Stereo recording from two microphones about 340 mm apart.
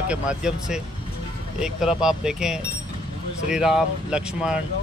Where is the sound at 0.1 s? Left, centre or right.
Centre.